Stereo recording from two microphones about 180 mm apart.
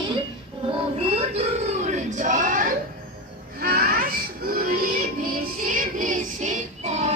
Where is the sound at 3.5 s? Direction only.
55° right (ahead or behind); by 7.1 s 40° right (ahead or behind).